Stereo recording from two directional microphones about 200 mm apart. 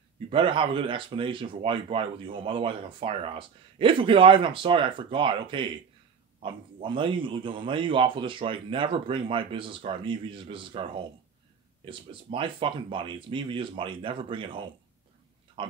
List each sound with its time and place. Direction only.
0.3 s speech: 25° right (ahead or behind)